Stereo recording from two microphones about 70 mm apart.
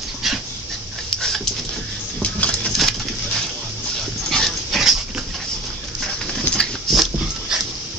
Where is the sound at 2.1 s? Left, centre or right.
Centre.